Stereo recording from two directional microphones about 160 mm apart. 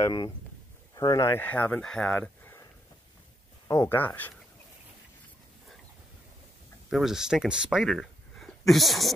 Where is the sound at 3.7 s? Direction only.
15° left (ahead or behind).